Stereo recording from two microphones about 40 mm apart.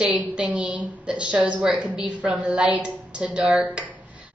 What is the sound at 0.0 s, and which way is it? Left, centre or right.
A woman's voice, right.